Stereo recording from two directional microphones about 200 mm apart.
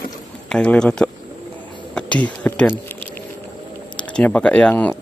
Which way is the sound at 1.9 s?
5° left (ahead or behind).